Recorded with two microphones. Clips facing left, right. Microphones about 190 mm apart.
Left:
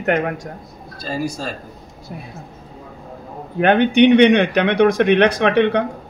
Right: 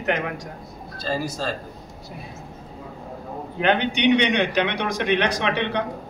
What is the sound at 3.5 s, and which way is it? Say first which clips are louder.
Speech: left 8 dB; 50° left (ahead or behind).